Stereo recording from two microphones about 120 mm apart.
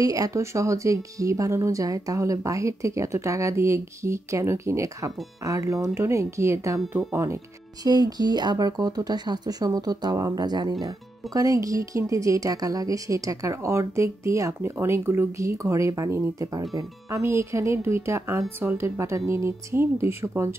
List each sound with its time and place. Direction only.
0.0 s speech: 30° right (ahead or behind)
7.8 s speech: 35° right (ahead or behind)